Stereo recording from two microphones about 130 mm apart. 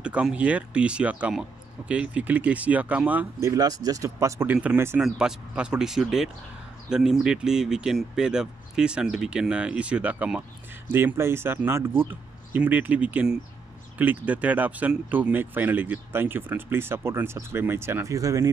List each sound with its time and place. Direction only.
0.0 s speech: 10° right (ahead or behind)
5.0 s speech: 5° right (ahead or behind); by 18.5 s 25° right (ahead or behind)